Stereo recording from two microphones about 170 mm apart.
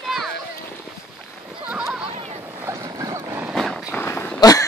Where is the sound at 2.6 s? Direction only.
20° right (ahead or behind).